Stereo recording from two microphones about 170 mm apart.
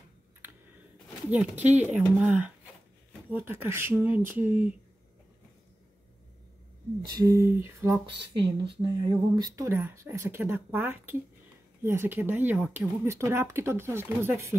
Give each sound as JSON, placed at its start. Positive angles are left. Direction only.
{"t": 1.6, "sound": "speech", "side_deg": -10}
{"t": 7.0, "sound": "speech", "side_deg": -25}
{"t": 8.1, "sound": "speech", "side_deg": -30}